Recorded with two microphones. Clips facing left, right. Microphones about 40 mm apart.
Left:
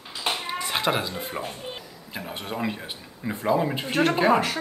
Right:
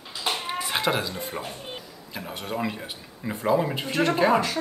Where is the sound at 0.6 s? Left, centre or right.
Centre.